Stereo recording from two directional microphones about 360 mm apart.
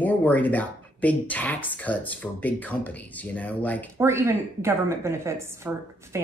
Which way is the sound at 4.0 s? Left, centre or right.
Centre.